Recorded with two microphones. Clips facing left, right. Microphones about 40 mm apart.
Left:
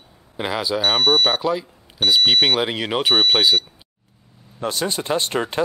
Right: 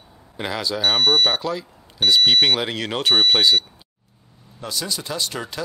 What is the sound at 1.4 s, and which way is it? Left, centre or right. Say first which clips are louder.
Speech: left 4 dB; centre.